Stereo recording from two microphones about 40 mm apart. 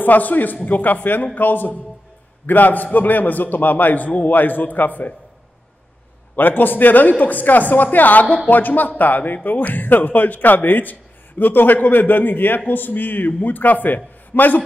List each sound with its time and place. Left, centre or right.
0.0 s speech: left
6.3 s speech: left